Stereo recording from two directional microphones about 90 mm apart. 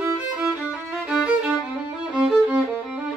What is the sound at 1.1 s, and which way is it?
Music, 10° right (ahead or behind).